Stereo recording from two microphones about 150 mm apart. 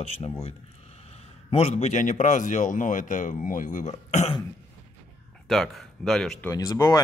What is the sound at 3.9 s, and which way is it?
Throat clearing, 45° left (ahead or behind).